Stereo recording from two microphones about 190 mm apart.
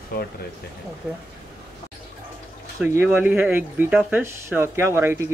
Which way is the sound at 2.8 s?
10° right (ahead or behind).